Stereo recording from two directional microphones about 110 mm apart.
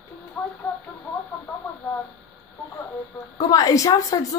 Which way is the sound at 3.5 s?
30° left (ahead or behind).